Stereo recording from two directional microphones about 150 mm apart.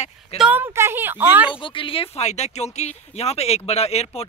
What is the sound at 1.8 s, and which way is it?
Speech, 35° left (ahead or behind).